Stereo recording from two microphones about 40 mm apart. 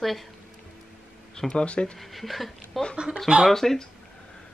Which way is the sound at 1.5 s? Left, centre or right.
Left.